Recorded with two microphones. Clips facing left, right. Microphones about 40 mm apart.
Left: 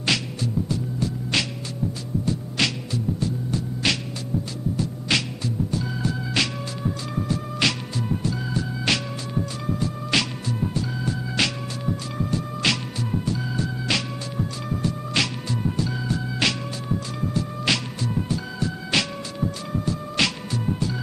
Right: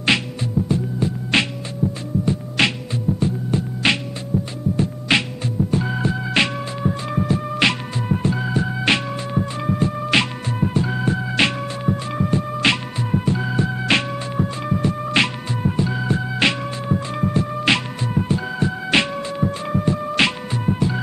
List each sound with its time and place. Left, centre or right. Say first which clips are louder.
0.0 s music: right 5 dB; right